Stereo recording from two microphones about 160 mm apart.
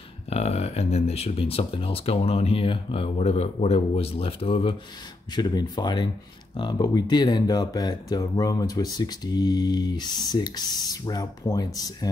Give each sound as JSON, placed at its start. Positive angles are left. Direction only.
{"t": 0.3, "sound": "speech", "side_deg": 40}